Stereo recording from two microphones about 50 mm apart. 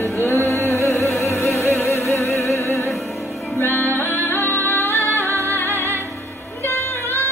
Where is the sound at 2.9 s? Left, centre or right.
Centre.